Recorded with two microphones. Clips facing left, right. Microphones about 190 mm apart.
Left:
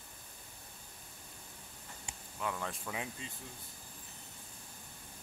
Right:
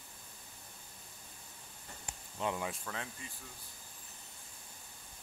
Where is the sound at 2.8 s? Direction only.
15° left (ahead or behind).